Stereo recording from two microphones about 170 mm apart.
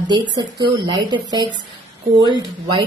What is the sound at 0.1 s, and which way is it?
A woman's voice, 25° right (ahead or behind).